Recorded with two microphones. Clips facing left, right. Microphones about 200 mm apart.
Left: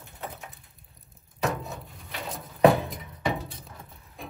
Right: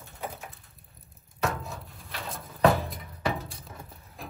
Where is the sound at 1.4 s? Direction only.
Centre (ahead or behind).